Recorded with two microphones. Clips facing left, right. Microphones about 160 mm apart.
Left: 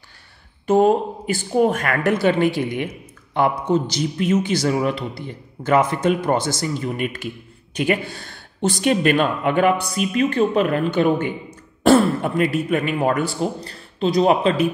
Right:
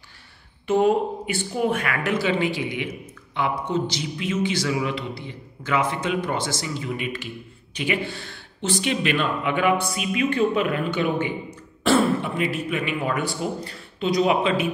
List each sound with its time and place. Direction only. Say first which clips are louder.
0.7 s a man's voice: left 4 dB; 40° left (ahead or behind)